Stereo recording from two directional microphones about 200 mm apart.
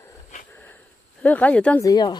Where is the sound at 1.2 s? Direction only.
10° left (ahead or behind).